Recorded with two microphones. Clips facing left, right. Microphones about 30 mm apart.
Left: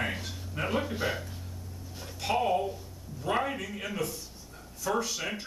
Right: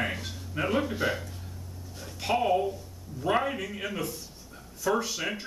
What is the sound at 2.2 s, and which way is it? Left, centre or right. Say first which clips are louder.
A man's voice: right 2 dB; centre.